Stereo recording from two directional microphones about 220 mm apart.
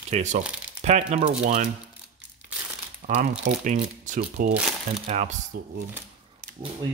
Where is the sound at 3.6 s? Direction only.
35° right (ahead or behind).